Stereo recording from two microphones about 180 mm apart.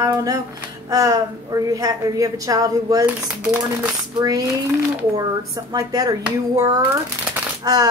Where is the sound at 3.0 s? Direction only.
10° right (ahead or behind).